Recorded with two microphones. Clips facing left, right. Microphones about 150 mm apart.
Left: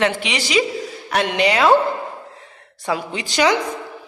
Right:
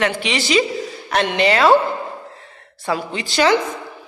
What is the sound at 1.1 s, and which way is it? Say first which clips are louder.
A woman's voice: right 1 dB; 10° left (ahead or behind).